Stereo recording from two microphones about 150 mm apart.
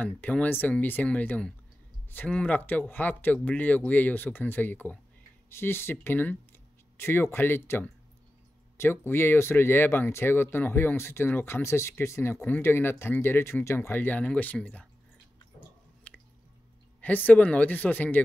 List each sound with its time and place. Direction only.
0.0 s speech: 10° left (ahead or behind)
17.0 s speech: 10° left (ahead or behind)